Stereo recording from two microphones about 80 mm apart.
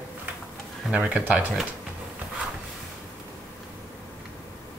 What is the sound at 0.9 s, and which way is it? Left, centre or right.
Speech, centre.